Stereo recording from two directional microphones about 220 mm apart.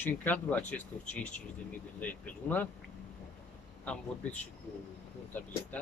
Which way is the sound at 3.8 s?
5° left (ahead or behind).